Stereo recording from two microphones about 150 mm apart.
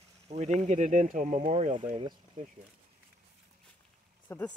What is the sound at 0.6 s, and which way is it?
Speech, 50° right (ahead or behind).